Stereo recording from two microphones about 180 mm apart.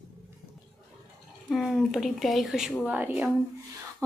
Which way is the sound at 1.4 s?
Centre (ahead or behind).